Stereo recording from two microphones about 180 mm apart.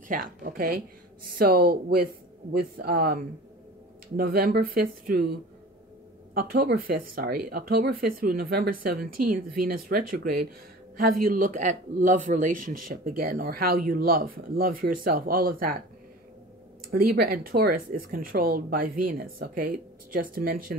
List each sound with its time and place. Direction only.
0.1 s speech: 50° right (ahead or behind)
4.2 s speech: 55° right (ahead or behind)
6.3 s speech: 55° right (ahead or behind)
16.9 s speech: 55° right (ahead or behind)